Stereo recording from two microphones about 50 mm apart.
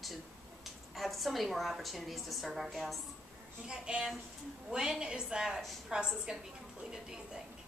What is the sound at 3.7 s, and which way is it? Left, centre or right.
A woman's voice, centre.